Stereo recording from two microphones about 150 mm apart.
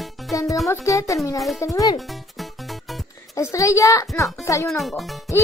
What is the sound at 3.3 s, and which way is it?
Speech, 20° left (ahead or behind).